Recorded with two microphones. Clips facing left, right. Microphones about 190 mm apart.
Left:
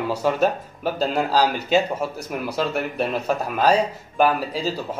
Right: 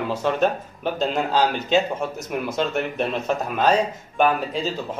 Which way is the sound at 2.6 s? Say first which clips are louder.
Left 1 dB; 5° left (ahead or behind).